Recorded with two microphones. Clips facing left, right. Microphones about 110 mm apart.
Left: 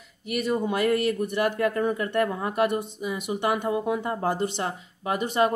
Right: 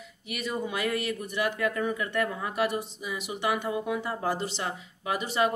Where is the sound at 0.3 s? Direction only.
50° left (ahead or behind).